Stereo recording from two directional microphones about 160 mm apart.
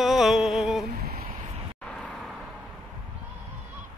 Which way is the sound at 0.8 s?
70° right (ahead or behind).